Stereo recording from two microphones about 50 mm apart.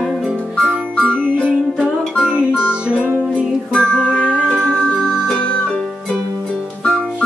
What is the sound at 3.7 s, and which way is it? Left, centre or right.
Music, left.